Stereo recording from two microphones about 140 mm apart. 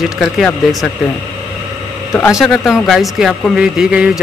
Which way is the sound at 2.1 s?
20° left (ahead or behind).